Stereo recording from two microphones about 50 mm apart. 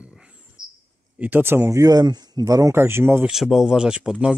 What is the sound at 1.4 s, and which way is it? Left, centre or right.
Speech, right.